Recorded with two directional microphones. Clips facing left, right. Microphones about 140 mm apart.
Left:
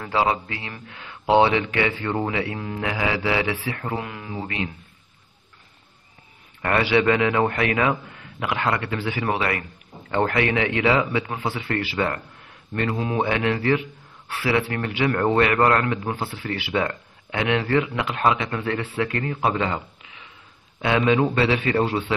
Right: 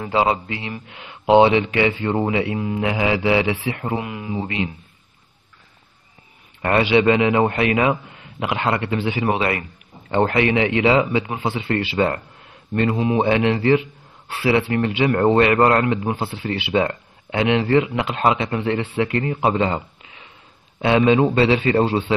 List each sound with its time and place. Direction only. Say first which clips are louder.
0.0 s a man's voice: right 3 dB; 20° right (ahead or behind)
6.6 s a man's voice: right 4 dB; 20° right (ahead or behind)